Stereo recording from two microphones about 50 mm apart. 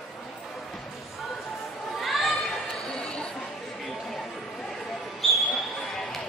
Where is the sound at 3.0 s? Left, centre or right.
Centre.